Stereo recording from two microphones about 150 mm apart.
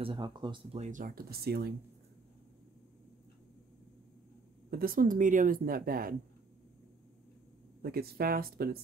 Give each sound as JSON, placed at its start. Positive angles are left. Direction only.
{"t": 0.0, "sound": "speech", "side_deg": -30}
{"t": 0.7, "sound": "speech", "side_deg": -55}
{"t": 4.6, "sound": "speech", "side_deg": -80}
{"t": 7.8, "sound": "speech", "side_deg": -90}